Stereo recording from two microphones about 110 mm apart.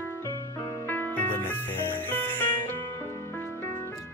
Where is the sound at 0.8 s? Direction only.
20° left (ahead or behind).